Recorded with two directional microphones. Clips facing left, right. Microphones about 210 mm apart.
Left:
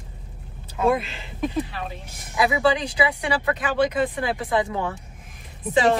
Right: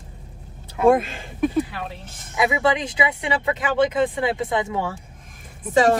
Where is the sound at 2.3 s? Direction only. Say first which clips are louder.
Even; 20° right (ahead or behind).